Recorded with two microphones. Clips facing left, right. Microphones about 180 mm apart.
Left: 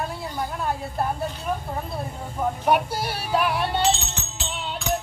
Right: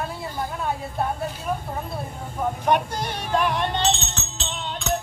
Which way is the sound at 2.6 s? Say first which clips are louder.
Even; 5° left (ahead or behind).